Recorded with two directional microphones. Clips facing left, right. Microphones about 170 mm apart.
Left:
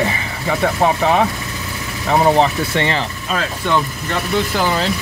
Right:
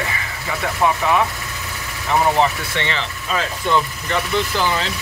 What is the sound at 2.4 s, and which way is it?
Speech, 40° left (ahead or behind).